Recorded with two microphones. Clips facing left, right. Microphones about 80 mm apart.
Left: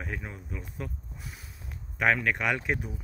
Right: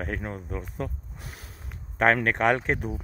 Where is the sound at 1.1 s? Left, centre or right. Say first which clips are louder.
Right 2 dB; right.